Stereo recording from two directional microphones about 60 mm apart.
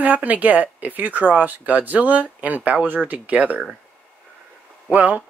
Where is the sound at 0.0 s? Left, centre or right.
Right.